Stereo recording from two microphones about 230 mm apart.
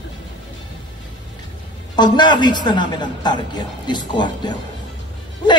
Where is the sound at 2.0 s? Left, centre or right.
Centre.